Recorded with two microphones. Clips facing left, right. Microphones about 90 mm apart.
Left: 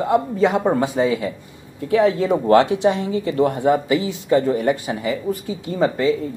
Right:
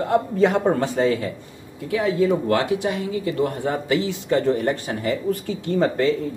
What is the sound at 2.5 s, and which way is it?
Speech, 25° left (ahead or behind).